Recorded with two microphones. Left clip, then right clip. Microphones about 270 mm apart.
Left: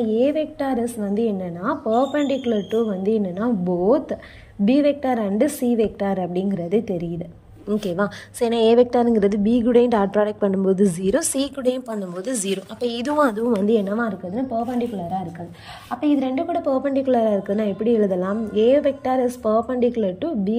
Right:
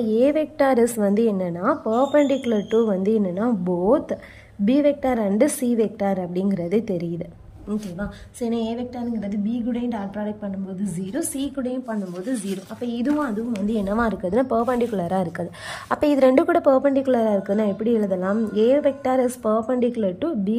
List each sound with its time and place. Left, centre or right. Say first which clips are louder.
0.0 s a woman's voice: right 1 dB; centre; by 13.4 s left
13.7 s a woman's voice: left 3 dB; centre
14.5 s a woman's voice: right 3 dB; centre